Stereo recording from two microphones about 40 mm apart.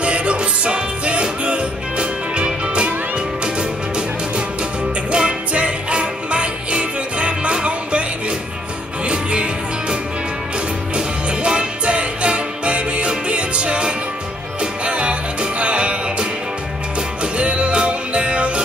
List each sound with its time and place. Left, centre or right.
0.0 s music: right
11.0 s music: right